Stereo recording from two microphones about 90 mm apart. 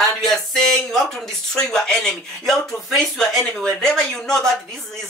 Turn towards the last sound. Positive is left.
turn(degrees=5)  # may be behind; listen again after turning